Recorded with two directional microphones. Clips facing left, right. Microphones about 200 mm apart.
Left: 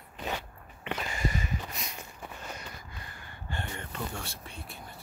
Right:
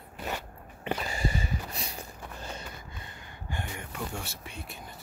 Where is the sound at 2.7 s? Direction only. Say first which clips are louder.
Right 1 dB; 20° right (ahead or behind).